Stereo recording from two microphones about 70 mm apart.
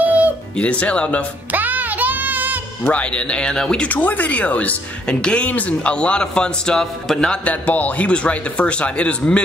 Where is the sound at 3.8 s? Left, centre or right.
Left.